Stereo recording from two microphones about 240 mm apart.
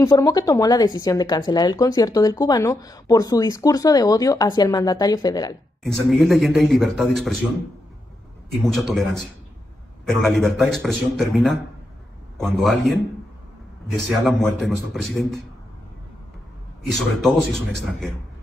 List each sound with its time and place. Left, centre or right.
0.0 s speech: centre
6.0 s speech: centre
8.6 s speech: centre
10.0 s speech: centre
14.0 s speech: centre
16.8 s speech: centre